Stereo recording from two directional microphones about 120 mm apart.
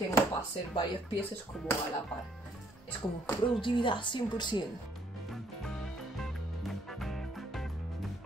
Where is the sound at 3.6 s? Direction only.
45° left (ahead or behind).